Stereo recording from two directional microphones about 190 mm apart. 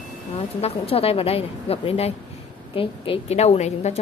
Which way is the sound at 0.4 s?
30° left (ahead or behind).